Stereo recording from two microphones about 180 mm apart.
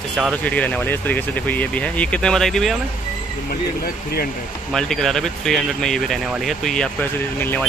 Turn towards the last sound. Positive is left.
turn(degrees=10)  # may be behind; listen again after turning